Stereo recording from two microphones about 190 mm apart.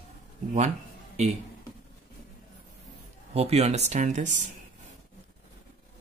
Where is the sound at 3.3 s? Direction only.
35° right (ahead or behind).